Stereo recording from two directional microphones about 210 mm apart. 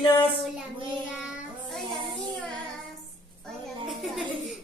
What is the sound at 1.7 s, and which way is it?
Child singing, centre (ahead or behind).